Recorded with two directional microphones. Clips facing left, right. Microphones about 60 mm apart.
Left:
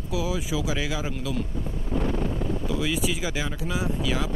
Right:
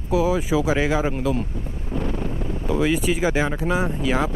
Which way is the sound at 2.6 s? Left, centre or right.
Right.